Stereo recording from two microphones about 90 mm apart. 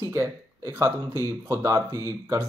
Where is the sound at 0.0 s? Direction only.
30° right (ahead or behind).